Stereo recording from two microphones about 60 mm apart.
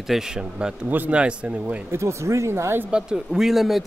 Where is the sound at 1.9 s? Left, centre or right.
Right.